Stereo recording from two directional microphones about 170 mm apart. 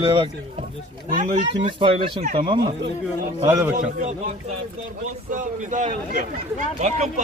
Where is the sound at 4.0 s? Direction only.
45° right (ahead or behind).